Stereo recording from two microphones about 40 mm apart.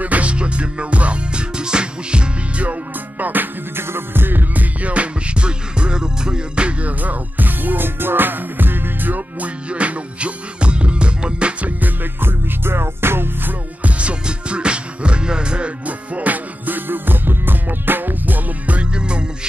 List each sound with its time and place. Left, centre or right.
0.0 s music: right
3.7 s music: right
4.8 s music: right
6.9 s music: right
9.7 s music: right
11.6 s music: right
12.2 s music: right
13.8 s music: right
16.2 s music: right
18.8 s music: right